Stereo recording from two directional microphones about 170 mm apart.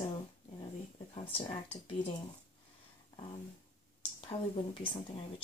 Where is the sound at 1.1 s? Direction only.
35° left (ahead or behind).